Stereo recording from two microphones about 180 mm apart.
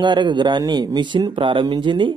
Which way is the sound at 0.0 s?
25° right (ahead or behind).